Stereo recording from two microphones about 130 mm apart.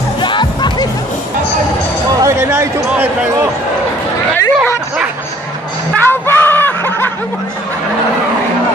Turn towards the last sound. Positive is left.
turn(degrees=15)  # may be behind; listen again after turning